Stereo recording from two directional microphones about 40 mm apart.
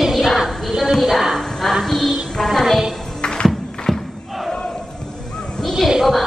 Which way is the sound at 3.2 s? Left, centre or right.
Centre.